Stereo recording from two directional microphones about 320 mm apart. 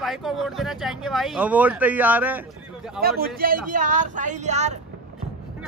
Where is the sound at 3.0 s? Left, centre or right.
Right.